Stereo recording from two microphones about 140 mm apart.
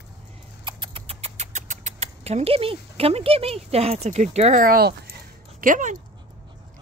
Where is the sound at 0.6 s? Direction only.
35° right (ahead or behind).